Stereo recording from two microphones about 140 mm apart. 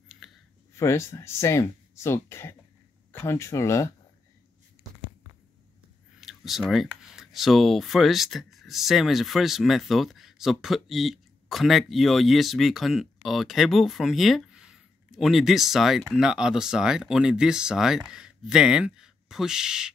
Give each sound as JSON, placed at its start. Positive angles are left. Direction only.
{"t": 0.2, "sound": "a sound", "side_deg": 0}
{"t": 0.7, "sound": "speech", "side_deg": 20}
{"t": 6.2, "sound": "speech", "side_deg": 0}